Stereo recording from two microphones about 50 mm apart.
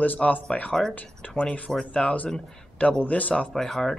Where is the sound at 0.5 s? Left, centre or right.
Centre.